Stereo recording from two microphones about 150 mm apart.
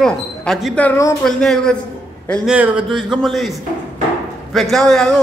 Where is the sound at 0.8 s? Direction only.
20° left (ahead or behind).